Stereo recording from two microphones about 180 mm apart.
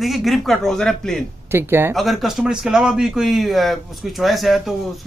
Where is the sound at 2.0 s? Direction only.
Centre (ahead or behind).